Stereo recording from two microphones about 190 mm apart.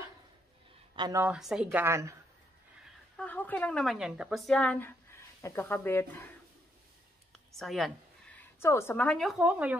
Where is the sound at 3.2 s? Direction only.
10° left (ahead or behind).